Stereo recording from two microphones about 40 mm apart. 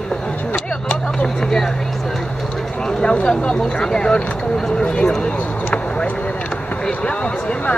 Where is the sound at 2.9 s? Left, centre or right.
Left.